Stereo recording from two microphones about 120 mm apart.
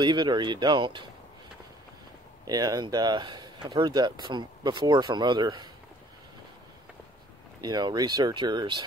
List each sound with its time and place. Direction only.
0.0 s speech: 40° right (ahead or behind)
2.4 s speech: 30° right (ahead or behind)
7.6 s speech: 35° right (ahead or behind)